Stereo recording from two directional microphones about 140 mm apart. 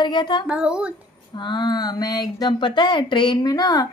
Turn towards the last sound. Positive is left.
turn(degrees=25)  # may be behind; listen again after turning